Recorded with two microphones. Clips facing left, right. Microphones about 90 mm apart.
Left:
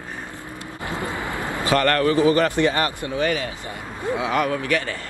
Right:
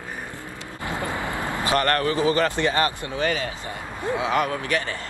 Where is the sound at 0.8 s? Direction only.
20° left (ahead or behind).